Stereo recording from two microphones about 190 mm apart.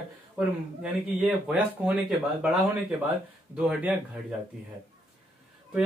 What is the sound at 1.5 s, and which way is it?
Speech, 5° right (ahead or behind).